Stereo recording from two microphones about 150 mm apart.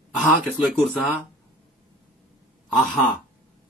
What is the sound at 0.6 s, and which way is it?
Speech, 5° right (ahead or behind).